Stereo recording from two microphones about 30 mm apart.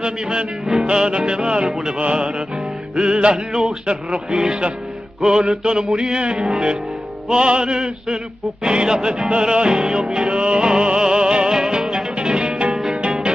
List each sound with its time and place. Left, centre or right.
0.0 s music: right